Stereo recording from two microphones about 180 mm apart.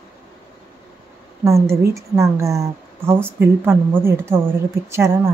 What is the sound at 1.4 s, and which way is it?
A woman's voice, 15° right (ahead or behind).